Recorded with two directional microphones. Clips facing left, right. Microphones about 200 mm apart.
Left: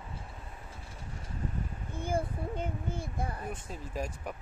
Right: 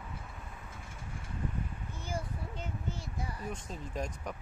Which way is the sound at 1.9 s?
55° left (ahead or behind).